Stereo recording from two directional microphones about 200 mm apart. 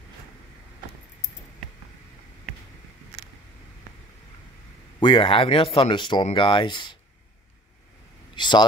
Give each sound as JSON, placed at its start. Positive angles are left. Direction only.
{"t": 5.0, "sound": "speech", "side_deg": 25}
{"t": 8.4, "sound": "speech", "side_deg": 20}